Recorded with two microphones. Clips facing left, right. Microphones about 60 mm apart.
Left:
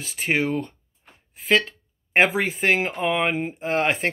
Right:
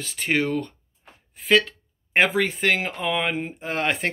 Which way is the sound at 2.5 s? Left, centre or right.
Centre.